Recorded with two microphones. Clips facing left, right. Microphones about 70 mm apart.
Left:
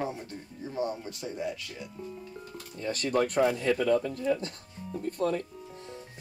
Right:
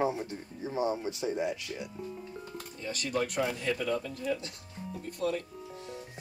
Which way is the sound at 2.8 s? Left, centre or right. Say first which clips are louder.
Left 5 dB; left.